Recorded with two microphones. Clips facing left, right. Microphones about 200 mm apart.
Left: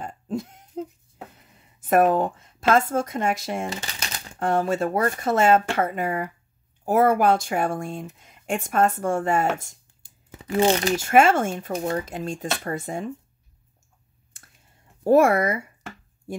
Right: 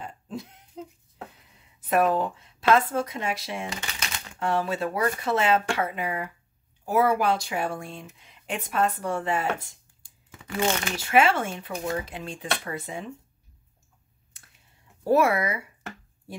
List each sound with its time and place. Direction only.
0.0 s a sound: 45° left (ahead or behind)
1.8 s a sound: 50° left (ahead or behind)
2.1 s speech: 45° left (ahead or behind)
3.7 s typewriter: 30° left (ahead or behind)
4.4 s speech: 45° left (ahead or behind)
10.0 s speech: 30° left (ahead or behind)
15.0 s speech: 50° left (ahead or behind)